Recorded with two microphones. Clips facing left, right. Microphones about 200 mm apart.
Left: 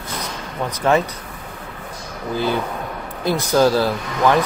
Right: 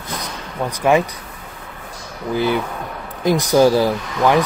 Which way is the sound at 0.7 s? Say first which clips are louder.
Right 2 dB; 10° right (ahead or behind).